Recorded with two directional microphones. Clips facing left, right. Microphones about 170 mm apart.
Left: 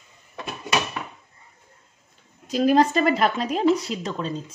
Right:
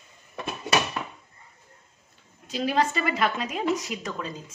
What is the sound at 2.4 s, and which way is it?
Speech, 45° left (ahead or behind).